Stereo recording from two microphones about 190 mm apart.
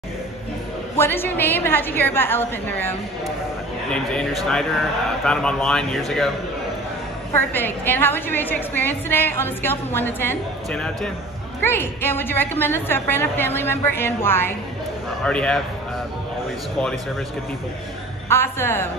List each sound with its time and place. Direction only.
0.9 s a woman's voice: 10° left (ahead or behind)
3.9 s speech: 5° left (ahead or behind)
7.3 s a woman's voice: 10° left (ahead or behind)
18.3 s a woman's voice: 10° left (ahead or behind)